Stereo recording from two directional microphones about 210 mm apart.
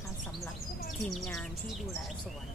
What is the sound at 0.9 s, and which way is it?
Speech, centre (ahead or behind).